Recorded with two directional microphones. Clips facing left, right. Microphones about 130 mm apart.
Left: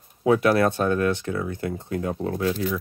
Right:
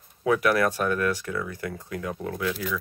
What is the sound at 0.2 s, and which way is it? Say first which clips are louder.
Speech: left 3 dB; 25° left (ahead or behind).